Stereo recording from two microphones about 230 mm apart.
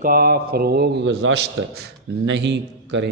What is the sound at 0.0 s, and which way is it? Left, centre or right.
A man's voice, right.